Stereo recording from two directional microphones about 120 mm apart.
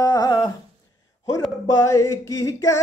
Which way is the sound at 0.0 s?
30° left (ahead or behind).